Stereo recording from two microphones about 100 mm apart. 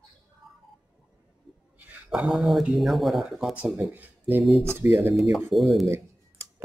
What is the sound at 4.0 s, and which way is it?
Speech, 20° right (ahead or behind).